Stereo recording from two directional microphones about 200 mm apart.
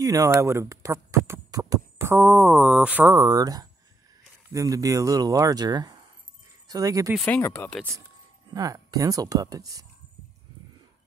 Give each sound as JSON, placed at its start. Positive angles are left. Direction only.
{"t": 0.0, "sound": "speech", "side_deg": -15}
{"t": 7.2, "sound": "speech", "side_deg": 10}
{"t": 8.5, "sound": "speech", "side_deg": -15}